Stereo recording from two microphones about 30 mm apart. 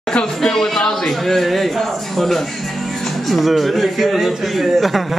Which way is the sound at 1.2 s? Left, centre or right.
Centre.